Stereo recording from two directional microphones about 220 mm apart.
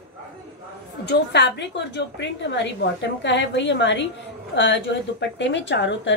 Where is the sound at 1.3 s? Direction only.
50° left (ahead or behind).